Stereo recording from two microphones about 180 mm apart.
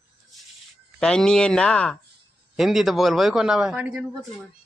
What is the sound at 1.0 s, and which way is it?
A man's voice, 5° left (ahead or behind).